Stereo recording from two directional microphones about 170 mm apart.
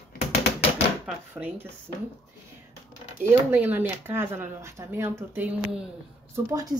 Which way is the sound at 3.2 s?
10° right (ahead or behind).